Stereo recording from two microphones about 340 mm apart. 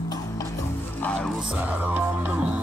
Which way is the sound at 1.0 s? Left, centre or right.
Centre.